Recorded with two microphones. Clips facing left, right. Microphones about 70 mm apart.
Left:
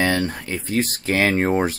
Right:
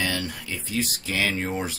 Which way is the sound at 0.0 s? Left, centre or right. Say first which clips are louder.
Left 8 dB; left.